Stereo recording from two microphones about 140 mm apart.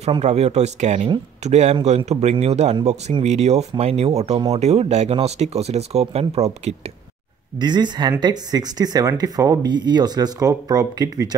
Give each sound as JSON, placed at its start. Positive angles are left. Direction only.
{"t": 0.2, "sound": "speech", "side_deg": -50}
{"t": 7.5, "sound": "speech", "side_deg": -30}